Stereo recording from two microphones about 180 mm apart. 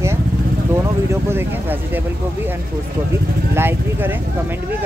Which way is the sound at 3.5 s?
10° right (ahead or behind).